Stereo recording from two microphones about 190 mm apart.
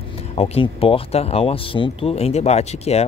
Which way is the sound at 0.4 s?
30° left (ahead or behind).